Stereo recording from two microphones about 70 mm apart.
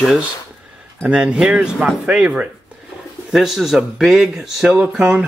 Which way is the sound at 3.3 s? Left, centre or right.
Centre.